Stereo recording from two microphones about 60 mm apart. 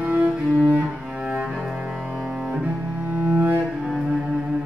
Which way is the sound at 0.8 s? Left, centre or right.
Centre.